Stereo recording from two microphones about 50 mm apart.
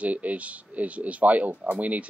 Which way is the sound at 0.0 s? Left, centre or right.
Right.